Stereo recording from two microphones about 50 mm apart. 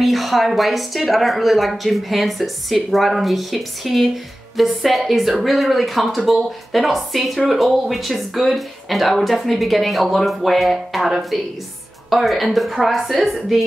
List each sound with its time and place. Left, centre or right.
0.0 s speech: centre